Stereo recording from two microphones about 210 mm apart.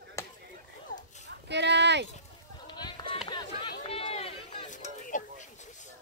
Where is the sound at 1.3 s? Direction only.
55° right (ahead or behind).